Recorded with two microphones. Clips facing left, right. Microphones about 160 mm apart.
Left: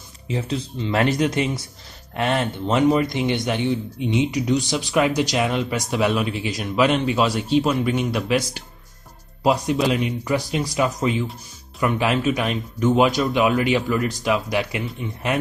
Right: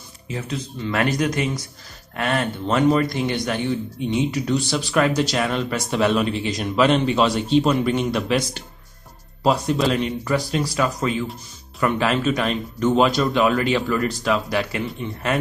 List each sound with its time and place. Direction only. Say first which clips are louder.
0.3 s speech: left 3 dB; 25° left (ahead or behind); by 15.2 s 10° left (ahead or behind)